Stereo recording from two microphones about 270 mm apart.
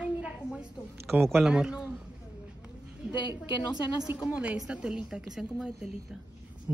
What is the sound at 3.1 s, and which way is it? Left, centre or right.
Speech, centre.